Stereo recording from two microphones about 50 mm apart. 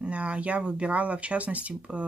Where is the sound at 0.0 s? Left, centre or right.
Right.